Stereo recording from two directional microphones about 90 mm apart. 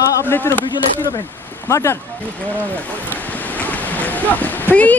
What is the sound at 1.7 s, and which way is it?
Speech, 35° left (ahead or behind).